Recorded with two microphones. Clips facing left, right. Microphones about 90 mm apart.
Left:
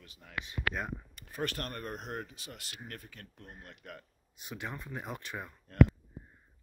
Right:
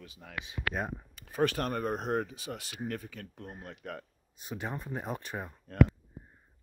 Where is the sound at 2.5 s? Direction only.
65° right (ahead or behind).